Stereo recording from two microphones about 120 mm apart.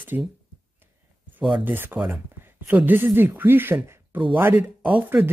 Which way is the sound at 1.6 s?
15° right (ahead or behind).